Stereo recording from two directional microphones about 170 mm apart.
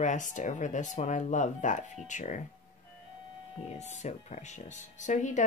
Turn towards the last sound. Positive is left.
turn(degrees=45)  # may be behind; listen again after turning